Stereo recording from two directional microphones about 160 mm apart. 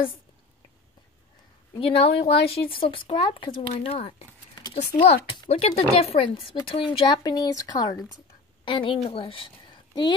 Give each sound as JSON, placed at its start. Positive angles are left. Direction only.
{"t": 1.8, "sound": "a woman's voice", "side_deg": 35}